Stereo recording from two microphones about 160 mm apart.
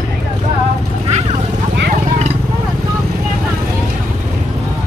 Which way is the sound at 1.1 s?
45° right (ahead or behind).